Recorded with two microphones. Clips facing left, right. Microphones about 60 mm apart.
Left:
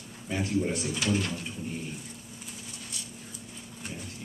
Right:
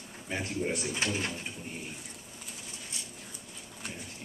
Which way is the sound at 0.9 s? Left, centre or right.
Right.